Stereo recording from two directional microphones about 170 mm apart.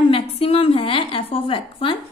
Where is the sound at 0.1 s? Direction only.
35° left (ahead or behind).